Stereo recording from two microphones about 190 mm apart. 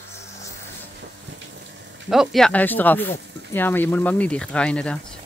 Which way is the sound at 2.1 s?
Centre (ahead or behind).